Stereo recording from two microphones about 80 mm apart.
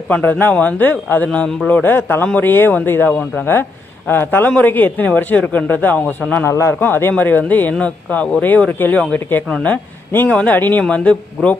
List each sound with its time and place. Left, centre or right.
0.1 s a man's voice: left
6.4 s a man's voice: left; by 11.5 s centre